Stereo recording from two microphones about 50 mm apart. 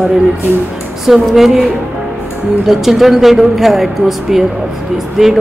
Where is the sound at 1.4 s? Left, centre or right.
Centre.